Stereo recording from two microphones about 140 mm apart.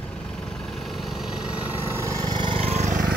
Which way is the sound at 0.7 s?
Centre (ahead or behind).